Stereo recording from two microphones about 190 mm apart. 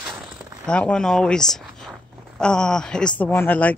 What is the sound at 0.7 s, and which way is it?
Speech, 5° left (ahead or behind).